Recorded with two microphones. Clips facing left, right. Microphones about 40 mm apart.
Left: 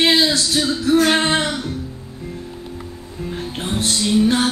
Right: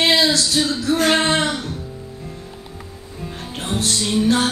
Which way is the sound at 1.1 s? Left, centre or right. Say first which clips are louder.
Even; centre.